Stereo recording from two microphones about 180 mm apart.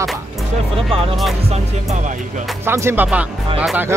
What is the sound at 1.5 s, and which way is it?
Speech, 40° right (ahead or behind).